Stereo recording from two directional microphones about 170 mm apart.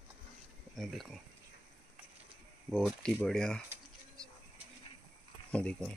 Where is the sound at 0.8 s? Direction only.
Centre (ahead or behind).